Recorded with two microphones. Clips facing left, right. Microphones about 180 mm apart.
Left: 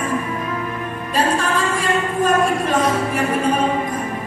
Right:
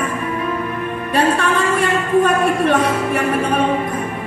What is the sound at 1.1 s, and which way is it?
Music, 60° right (ahead or behind).